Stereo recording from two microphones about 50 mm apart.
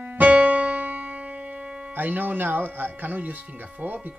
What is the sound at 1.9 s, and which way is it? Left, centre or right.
Speech, right.